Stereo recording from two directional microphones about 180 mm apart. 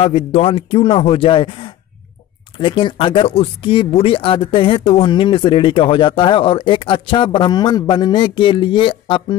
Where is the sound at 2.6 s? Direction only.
30° left (ahead or behind).